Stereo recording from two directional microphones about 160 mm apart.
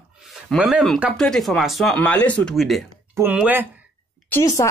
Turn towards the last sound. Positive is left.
turn(degrees=20)  # may be behind; listen again after turning